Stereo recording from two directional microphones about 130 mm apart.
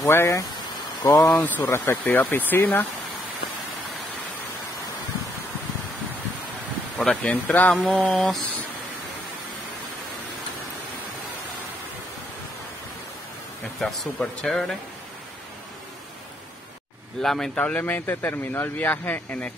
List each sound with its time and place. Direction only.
0.0 s speech: 20° left (ahead or behind)
7.0 s speech: 10° left (ahead or behind)
13.7 s speech: 5° left (ahead or behind)
17.2 s speech: 5° left (ahead or behind)